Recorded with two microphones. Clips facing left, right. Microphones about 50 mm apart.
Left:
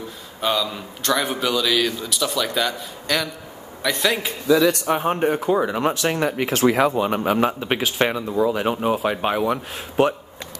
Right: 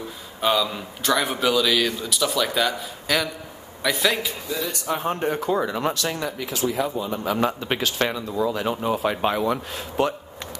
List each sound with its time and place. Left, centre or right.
0.4 s a man's voice: centre
4.6 s speech: left
5.0 s speech: left
5.3 s speech: centre
6.0 s speech: left
7.3 s speech: centre
8.1 s speech: left
8.9 s speech: centre